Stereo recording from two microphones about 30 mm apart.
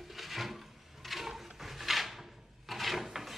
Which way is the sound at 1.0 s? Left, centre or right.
Centre.